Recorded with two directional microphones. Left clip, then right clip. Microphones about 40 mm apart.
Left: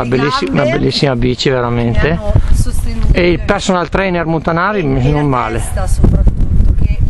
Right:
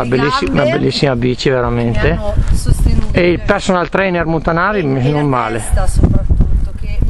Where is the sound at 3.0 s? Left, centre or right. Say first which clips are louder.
Left 1 dB; left.